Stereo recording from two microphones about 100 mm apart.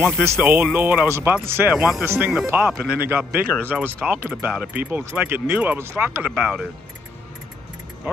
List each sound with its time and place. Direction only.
0.0 s speech: 20° right (ahead or behind)
1.8 s speech: 5° right (ahead or behind)
2.0 s speech: 20° right (ahead or behind)
6.2 s speech: 10° right (ahead or behind)